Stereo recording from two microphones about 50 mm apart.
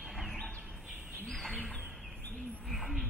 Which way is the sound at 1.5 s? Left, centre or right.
Centre.